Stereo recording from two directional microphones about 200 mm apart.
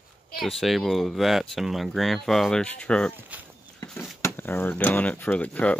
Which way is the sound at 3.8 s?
5° left (ahead or behind).